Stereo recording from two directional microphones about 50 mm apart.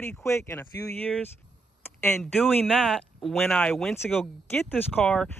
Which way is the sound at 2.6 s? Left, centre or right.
Centre.